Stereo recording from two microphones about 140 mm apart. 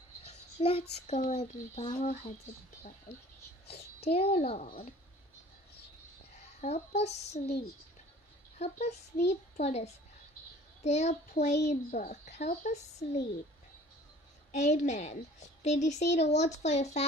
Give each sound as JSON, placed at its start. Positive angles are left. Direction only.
{"t": 0.2, "sound": "a child's voice", "side_deg": 45}
{"t": 3.6, "sound": "a child's voice", "side_deg": 50}
{"t": 6.3, "sound": "a child's voice", "side_deg": 50}
{"t": 14.5, "sound": "a woman's voice", "side_deg": 55}